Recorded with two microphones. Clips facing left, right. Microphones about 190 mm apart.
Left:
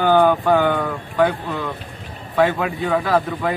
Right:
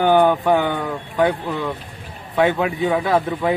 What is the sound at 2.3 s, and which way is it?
Speech, 20° right (ahead or behind).